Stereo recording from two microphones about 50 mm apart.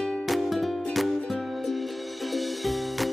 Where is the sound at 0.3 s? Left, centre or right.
Centre.